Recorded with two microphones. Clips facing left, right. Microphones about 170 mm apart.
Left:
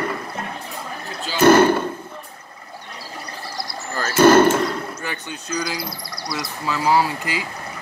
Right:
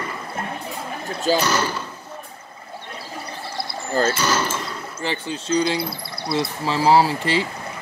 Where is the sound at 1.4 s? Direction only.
55° left (ahead or behind).